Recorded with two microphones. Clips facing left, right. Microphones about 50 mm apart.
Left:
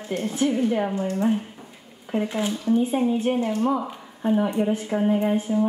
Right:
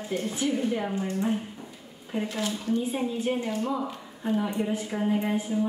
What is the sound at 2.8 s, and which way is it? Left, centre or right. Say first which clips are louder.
A woman's voice: left 6 dB; left.